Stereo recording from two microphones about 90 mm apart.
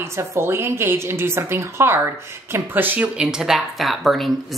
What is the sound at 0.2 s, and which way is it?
A woman's voice, 30° right (ahead or behind).